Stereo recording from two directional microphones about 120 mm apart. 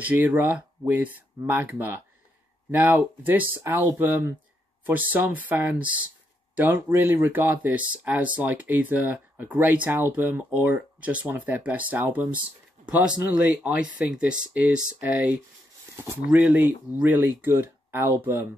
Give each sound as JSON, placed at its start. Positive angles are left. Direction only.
{"t": 0.0, "sound": "speech", "side_deg": -15}